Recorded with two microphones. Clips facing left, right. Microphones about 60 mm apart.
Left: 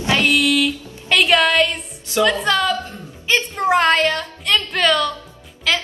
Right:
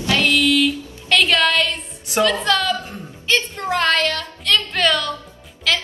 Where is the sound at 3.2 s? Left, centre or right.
Left.